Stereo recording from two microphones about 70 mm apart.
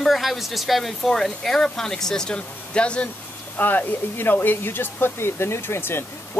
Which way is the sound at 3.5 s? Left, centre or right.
Left.